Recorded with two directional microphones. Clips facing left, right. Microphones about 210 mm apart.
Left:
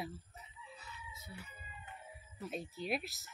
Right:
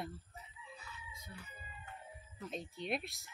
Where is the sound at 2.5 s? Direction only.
5° left (ahead or behind).